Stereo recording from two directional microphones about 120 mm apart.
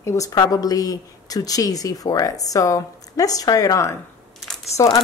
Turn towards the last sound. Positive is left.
turn(degrees=30)  # may be behind; listen again after turning